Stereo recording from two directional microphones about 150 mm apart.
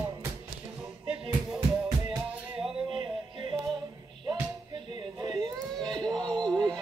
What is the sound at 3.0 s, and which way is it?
Music, 35° right (ahead or behind).